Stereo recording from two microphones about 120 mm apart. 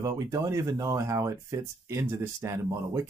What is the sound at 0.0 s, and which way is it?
Speech, 25° right (ahead or behind).